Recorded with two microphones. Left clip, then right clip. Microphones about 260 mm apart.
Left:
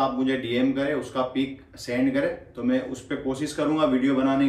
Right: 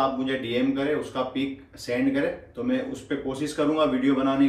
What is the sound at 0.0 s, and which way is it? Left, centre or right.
Speech, centre.